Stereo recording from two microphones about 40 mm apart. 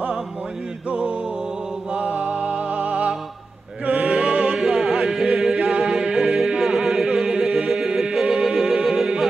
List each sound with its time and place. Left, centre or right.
1.9 s music: right
4.6 s music: centre
6.1 s music: centre